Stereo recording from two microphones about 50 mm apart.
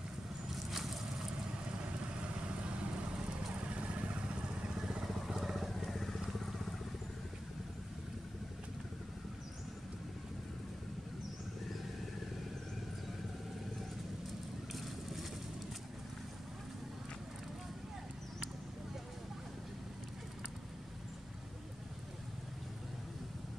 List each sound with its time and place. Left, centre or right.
0.5 s vehicle: centre
1.6 s vehicle: right
4.7 s vehicle: centre
14.7 s vehicle: centre